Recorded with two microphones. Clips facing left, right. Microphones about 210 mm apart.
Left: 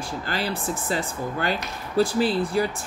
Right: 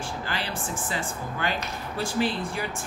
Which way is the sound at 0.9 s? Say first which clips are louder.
Left 5 dB; 40° left (ahead or behind).